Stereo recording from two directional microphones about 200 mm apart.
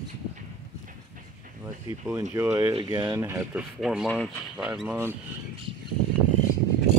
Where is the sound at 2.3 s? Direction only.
10° right (ahead or behind).